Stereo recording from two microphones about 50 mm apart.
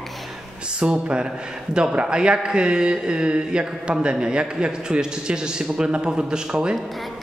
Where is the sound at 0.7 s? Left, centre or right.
Centre.